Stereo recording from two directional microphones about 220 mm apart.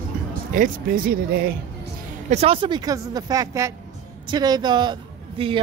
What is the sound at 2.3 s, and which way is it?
A woman's voice, 25° right (ahead or behind).